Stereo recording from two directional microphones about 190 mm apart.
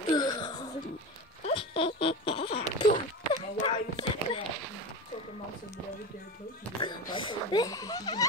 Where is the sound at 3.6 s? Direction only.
25° left (ahead or behind).